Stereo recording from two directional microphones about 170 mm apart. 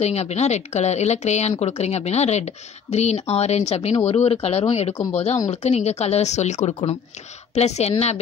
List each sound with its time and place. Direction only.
0.0 s a woman's voice: 40° left (ahead or behind)